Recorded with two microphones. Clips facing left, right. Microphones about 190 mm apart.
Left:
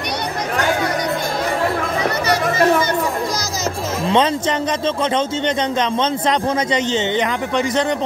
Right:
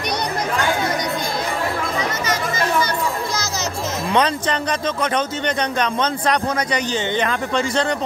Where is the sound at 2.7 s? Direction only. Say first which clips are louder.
Left 3 dB; 30° left (ahead or behind).